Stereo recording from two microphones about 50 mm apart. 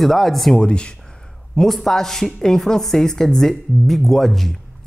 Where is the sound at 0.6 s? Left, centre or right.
Left.